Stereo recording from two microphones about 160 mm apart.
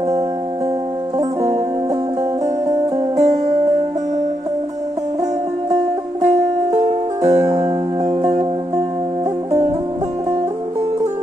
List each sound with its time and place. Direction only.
3.2 s music: 45° right (ahead or behind)
6.2 s music: 45° right (ahead or behind)
7.4 s music: 25° right (ahead or behind)